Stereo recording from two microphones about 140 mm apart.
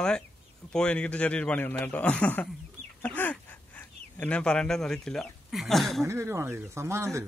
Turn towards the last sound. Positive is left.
turn(degrees=-20)  # may be behind; listen again after turning